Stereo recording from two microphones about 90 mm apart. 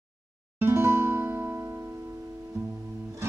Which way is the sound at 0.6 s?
30° right (ahead or behind).